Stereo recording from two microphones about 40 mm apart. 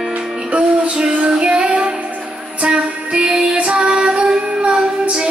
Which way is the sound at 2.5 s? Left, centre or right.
Right.